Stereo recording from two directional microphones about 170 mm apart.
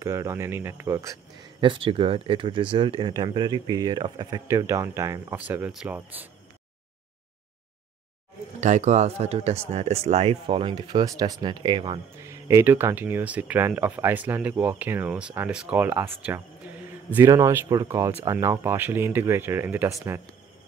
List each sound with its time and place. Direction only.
0.0 s speech: 15° right (ahead or behind)
1.6 s speech: 30° right (ahead or behind); by 6.2 s 10° right (ahead or behind)
8.5 s speech: 45° right (ahead or behind); by 16.3 s 10° right (ahead or behind)
16.6 s a sound: 10° right (ahead or behind)
17.1 s speech: 15° right (ahead or behind)